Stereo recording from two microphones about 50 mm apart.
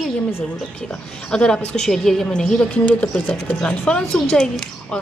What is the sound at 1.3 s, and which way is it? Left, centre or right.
Speech, centre.